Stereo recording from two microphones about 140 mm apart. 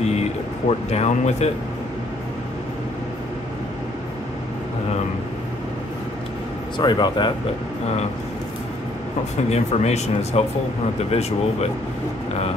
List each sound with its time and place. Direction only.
0.0 s vehicle: 50° left (ahead or behind)
6.8 s speech: 30° left (ahead or behind)
9.5 s speech: 50° left (ahead or behind)